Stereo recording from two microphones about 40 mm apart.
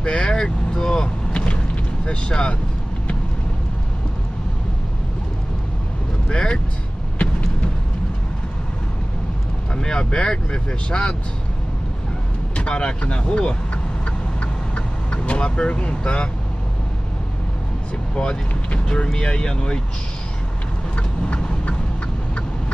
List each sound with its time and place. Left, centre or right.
0.0 s vehicle: left
2.0 s speech: left
6.2 s speech: left
9.8 s speech: left
12.5 s speech: left
15.0 s speech: left
18.1 s speech: centre
20.9 s vehicle: left